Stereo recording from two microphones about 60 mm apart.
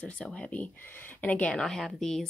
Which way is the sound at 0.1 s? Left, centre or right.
Centre.